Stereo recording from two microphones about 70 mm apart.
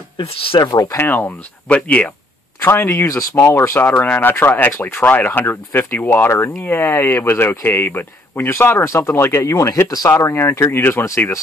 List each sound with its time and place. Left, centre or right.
0.5 s speech: left
0.9 s speech: left
1.7 s speech: centre
2.6 s speech: left